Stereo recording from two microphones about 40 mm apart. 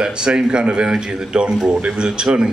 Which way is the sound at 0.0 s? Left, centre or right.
Right.